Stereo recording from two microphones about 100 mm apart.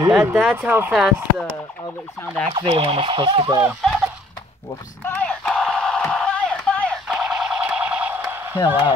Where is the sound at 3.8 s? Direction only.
5° left (ahead or behind).